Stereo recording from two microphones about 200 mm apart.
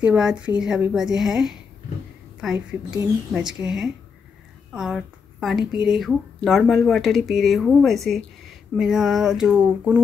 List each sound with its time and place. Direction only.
0.0 s speech: 5° right (ahead or behind)
2.9 s speech: 15° right (ahead or behind)